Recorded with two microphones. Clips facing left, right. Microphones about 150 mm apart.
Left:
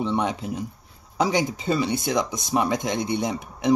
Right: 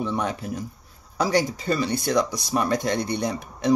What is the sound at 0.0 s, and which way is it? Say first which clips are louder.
Speech: left 2 dB; 20° left (ahead or behind).